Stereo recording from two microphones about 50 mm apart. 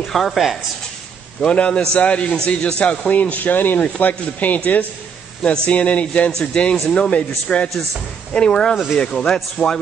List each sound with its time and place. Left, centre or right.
0.0 s speech: centre
1.4 s a man's voice: left
5.7 s a man's voice: left; by 9.8 s centre